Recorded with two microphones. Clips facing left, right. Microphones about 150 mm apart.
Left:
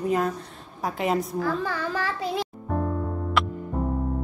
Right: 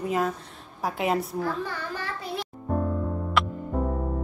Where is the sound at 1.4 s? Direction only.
90° left.